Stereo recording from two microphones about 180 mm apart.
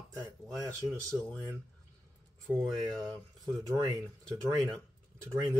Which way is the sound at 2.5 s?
5° right (ahead or behind).